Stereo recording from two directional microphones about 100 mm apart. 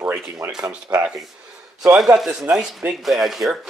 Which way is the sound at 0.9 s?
10° right (ahead or behind).